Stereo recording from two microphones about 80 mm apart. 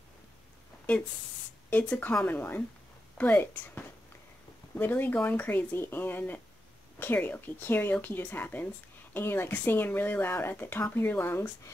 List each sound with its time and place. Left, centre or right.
1.7 s speech: left